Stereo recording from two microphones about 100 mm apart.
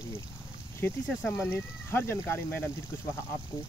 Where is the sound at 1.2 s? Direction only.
25° left (ahead or behind).